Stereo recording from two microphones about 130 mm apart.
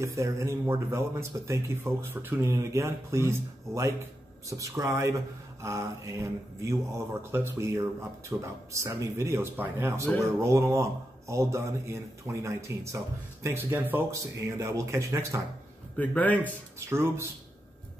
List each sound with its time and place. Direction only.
0.0 s speech: 20° right (ahead or behind)
16.0 s a man's voice: 10° left (ahead or behind)
16.9 s speech: 20° right (ahead or behind)